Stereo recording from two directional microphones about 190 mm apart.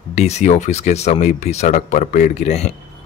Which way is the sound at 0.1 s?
35° left (ahead or behind).